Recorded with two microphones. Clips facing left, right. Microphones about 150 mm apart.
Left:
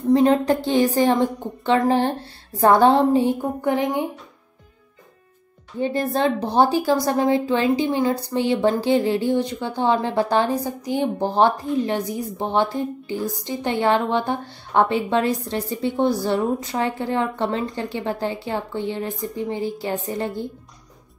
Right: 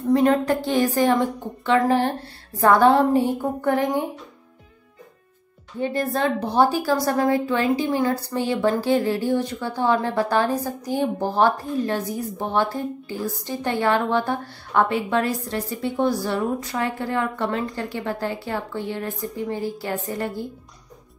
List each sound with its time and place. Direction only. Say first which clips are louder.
0.1 s a woman's voice: left 2 dB; 25° left (ahead or behind)
5.8 s a woman's voice: left 2 dB; 25° left (ahead or behind)